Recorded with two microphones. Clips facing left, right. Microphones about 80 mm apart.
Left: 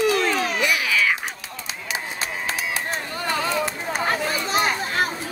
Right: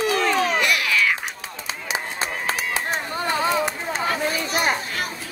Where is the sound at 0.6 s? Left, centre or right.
Centre.